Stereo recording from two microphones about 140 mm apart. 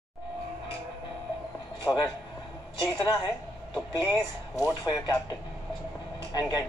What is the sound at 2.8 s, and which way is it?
Music, 30° left (ahead or behind).